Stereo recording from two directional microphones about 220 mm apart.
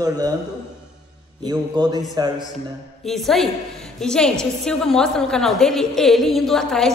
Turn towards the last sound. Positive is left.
turn(degrees=0)  # may be behind; listen again after turning